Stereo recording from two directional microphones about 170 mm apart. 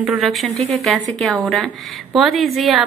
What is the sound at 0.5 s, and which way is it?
Speech, 40° right (ahead or behind).